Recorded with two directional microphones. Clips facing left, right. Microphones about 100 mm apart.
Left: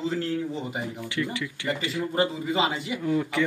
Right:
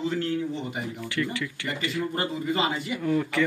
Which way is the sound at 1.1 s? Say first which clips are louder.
Right 1 dB; 20° left (ahead or behind).